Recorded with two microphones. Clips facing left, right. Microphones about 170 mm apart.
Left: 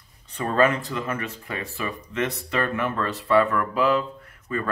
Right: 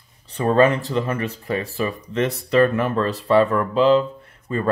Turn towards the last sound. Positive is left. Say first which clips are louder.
# right 6 dB
turn(degrees=-30)  # may be behind; listen again after turning